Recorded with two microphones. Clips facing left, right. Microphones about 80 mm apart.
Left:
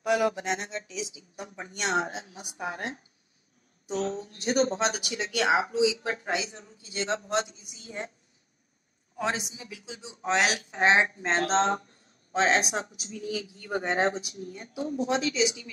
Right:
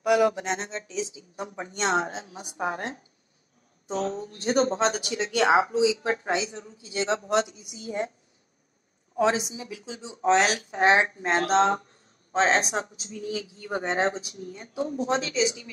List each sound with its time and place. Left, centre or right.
0.2 s speech: right
7.4 s speech: left
9.1 s speech: right
12.3 s speech: right